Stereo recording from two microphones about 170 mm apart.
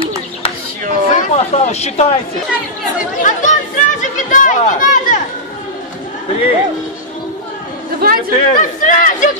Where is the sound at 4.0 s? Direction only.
50° left (ahead or behind).